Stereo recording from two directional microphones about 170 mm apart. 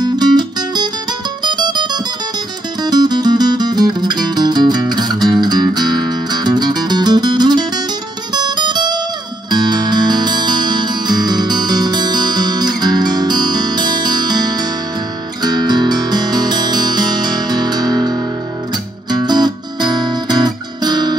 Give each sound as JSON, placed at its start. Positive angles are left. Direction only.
{"t": 0.0, "sound": "music", "side_deg": -25}
{"t": 8.3, "sound": "guitar", "side_deg": -25}
{"t": 9.5, "sound": "music", "side_deg": -25}
{"t": 19.0, "sound": "guitar", "side_deg": -25}